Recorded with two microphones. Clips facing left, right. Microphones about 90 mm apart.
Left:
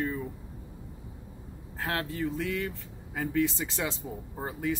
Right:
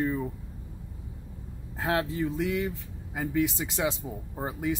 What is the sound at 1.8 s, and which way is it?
Speech, 20° right (ahead or behind).